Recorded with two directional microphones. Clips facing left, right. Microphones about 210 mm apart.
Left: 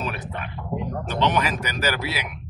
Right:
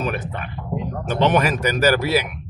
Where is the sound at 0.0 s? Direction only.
50° right (ahead or behind).